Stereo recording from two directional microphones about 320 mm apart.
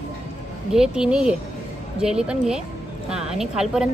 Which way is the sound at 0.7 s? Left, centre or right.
Centre.